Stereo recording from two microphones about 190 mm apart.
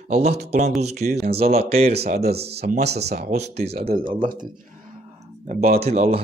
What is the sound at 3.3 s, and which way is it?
Speech, 35° right (ahead or behind).